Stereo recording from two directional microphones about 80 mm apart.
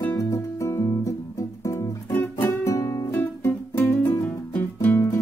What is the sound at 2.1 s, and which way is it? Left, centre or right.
Music, left.